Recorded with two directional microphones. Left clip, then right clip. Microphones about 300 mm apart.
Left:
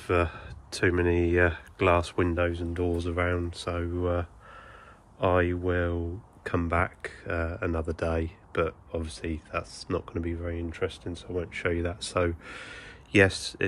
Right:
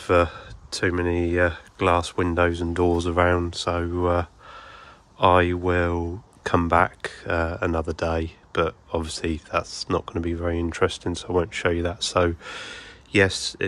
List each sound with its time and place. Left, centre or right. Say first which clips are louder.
0.0 s speech: right 7 dB; centre